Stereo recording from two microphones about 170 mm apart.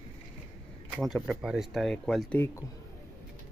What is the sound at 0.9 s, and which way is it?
Speech, centre (ahead or behind).